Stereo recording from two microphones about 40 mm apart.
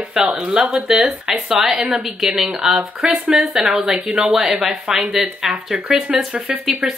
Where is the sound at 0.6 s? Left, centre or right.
Centre.